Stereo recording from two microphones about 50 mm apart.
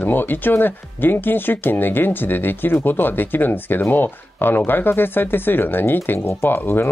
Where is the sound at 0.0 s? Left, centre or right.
Left.